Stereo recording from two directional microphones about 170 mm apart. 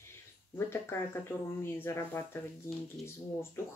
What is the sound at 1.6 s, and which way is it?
Speech, 15° left (ahead or behind).